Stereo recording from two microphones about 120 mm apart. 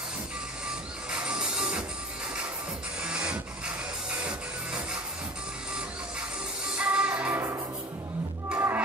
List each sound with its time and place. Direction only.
1.1 s music: 10° right (ahead or behind)
3.0 s printer: 5° right (ahead or behind)
4.2 s music: 10° right (ahead or behind)
6.8 s music: 10° right (ahead or behind)
8.5 s music: 20° right (ahead or behind)